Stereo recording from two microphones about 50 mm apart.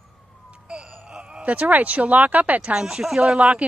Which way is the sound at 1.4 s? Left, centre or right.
Right.